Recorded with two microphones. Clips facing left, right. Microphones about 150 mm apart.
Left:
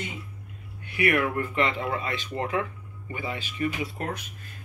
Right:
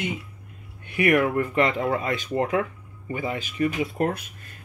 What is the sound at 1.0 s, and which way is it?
Speech, 45° right (ahead or behind).